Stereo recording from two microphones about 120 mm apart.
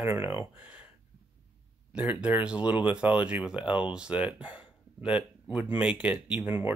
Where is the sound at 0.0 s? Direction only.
15° right (ahead or behind).